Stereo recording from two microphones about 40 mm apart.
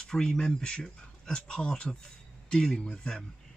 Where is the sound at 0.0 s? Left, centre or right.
Centre.